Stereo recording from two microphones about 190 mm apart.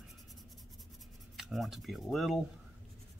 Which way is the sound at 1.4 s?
Centre (ahead or behind).